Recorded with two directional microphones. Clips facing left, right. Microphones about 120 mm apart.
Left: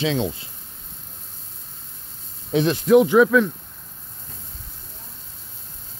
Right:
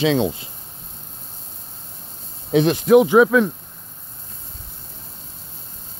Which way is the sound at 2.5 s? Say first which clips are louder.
Right 3 dB; 65° right (ahead or behind).